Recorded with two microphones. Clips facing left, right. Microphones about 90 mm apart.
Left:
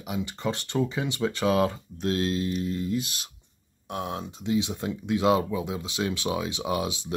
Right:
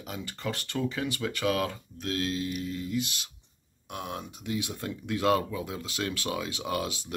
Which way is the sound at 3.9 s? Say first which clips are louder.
Left 5 dB; 25° left (ahead or behind).